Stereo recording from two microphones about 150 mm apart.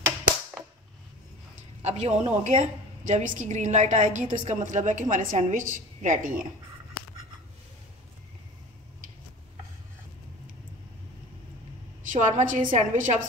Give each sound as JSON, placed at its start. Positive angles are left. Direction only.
{"t": 1.8, "sound": "a woman's voice", "side_deg": -45}
{"t": 12.0, "sound": "a woman's voice", "side_deg": -55}